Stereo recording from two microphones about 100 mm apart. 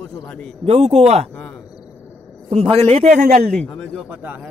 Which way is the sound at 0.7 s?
90° right.